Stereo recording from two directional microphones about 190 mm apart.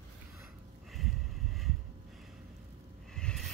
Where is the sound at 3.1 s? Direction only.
5° left (ahead or behind).